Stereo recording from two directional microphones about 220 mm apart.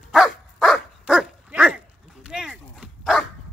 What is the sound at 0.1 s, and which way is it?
Dog, centre (ahead or behind).